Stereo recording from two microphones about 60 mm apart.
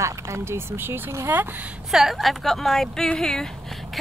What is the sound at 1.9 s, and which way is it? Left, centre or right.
Speech, centre.